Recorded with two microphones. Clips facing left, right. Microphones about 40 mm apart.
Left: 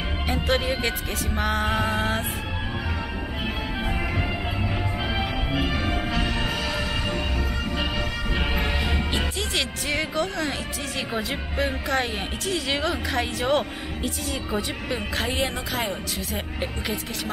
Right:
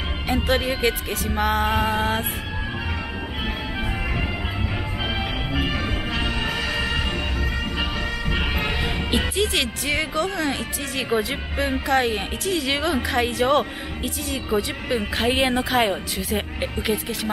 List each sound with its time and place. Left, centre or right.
0.3 s speech: centre
5.1 s music: centre
7.7 s music: centre
9.4 s speech: centre